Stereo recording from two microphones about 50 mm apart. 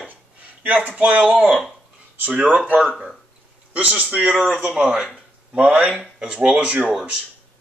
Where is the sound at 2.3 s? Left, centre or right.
Right.